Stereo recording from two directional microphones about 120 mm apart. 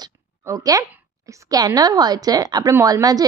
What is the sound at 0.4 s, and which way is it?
A woman's voice, 25° right (ahead or behind).